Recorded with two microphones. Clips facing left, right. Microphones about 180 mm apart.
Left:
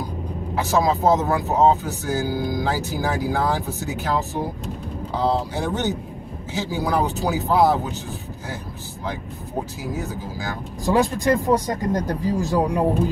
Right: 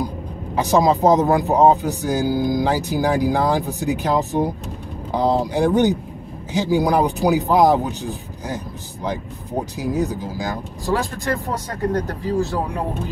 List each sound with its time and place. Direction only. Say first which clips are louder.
0.6 s speech: right 4 dB; 15° right (ahead or behind)
9.8 s speech: right 7 dB; 15° right (ahead or behind)
10.9 s speech: left 4 dB; 20° left (ahead or behind)